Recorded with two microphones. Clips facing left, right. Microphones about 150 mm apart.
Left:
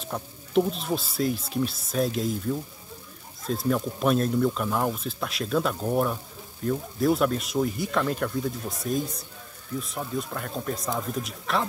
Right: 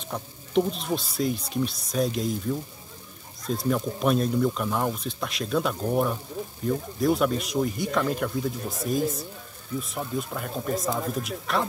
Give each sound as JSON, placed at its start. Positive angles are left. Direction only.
{"t": 0.0, "sound": "speech", "side_deg": 0}